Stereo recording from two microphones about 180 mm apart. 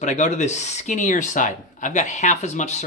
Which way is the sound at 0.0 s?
40° left (ahead or behind).